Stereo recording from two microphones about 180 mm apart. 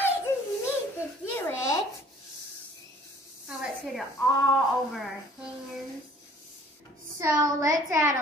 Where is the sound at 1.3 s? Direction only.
15° left (ahead or behind).